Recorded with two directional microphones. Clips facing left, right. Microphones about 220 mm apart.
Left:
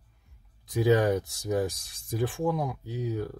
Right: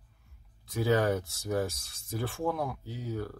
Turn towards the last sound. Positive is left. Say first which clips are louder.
# left 4 dB
turn(degrees=15)  # may be behind; listen again after turning